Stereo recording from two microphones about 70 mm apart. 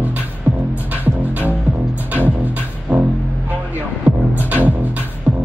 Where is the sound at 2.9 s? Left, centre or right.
Centre.